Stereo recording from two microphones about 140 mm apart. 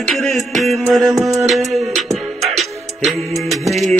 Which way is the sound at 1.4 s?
Centre (ahead or behind).